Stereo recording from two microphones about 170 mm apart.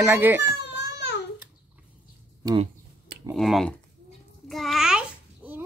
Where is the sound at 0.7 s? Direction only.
90° left.